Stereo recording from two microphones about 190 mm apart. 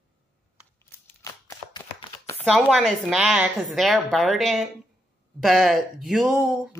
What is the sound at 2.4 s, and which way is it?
A woman's voice, centre (ahead or behind).